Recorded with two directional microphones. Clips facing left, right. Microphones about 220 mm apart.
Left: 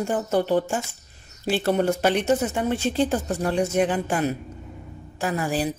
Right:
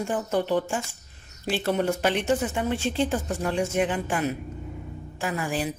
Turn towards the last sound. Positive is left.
turn(degrees=40)  # may be behind; listen again after turning